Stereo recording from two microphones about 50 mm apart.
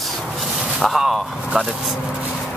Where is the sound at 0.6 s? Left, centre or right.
Centre.